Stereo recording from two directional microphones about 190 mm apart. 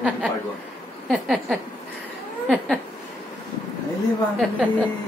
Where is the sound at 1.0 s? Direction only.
Centre (ahead or behind).